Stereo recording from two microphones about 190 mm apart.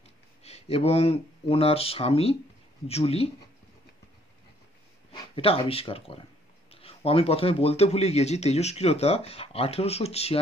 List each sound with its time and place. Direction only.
0.4 s speech: 35° left (ahead or behind)
5.1 s speech: 30° left (ahead or behind)